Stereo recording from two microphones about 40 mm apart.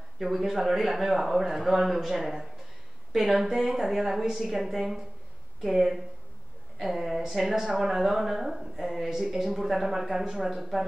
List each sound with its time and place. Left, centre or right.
0.2 s speech: centre
10.5 s speech: centre